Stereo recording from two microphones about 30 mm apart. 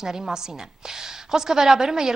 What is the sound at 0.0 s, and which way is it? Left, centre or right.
A woman's voice, centre.